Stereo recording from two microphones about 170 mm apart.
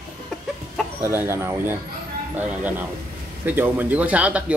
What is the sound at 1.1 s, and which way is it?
Speech, 15° right (ahead or behind).